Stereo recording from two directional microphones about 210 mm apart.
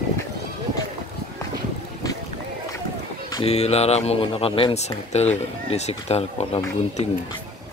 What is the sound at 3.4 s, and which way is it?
Speech, 30° left (ahead or behind).